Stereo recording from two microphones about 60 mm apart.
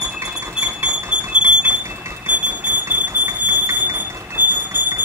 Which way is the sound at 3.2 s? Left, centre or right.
Right.